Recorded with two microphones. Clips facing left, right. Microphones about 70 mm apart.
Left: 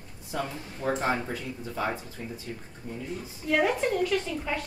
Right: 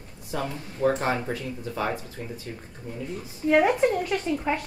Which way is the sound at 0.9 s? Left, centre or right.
Right.